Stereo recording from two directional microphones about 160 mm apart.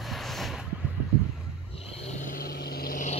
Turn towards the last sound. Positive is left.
turn(degrees=55)  # may be behind; listen again after turning